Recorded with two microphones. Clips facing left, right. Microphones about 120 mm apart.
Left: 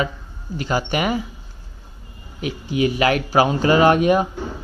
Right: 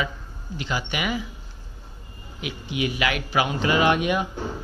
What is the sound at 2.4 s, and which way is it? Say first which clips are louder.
Speech: left 7 dB; 40° left (ahead or behind).